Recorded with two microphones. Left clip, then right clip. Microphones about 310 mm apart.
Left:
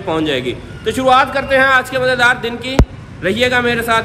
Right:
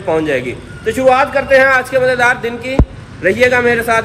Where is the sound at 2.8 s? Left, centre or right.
Right.